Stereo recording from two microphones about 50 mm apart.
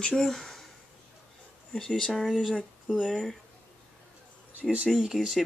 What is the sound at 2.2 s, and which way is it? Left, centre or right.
Speech, centre.